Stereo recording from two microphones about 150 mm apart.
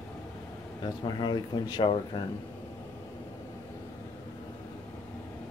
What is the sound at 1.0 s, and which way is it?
Speech, 30° left (ahead or behind).